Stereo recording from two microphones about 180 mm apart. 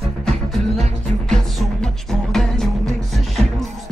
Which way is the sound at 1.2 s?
5° left (ahead or behind).